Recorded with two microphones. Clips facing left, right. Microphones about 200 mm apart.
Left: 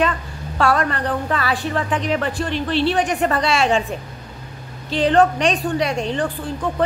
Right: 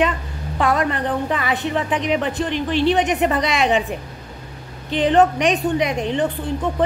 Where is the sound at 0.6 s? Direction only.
15° right (ahead or behind).